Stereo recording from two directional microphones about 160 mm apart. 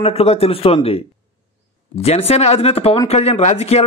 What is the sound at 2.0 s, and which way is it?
Speech, 40° left (ahead or behind).